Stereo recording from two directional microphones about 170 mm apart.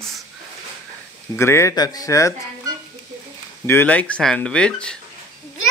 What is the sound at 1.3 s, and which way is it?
Speech, 15° left (ahead or behind).